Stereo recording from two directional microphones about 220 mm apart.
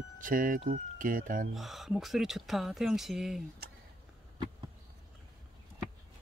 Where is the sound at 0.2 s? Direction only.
40° right (ahead or behind).